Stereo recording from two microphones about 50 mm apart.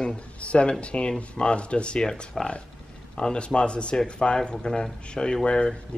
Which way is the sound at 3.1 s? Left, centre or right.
Centre.